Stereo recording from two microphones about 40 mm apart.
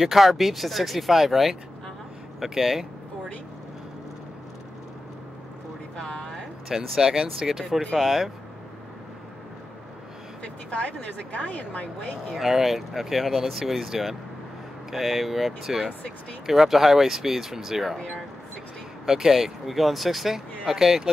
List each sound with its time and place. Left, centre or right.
0.0 s speech: centre
6.0 s a sound: left
6.7 s speech: centre
10.7 s a woman's voice: left
12.4 s speech: centre
19.0 s speech: centre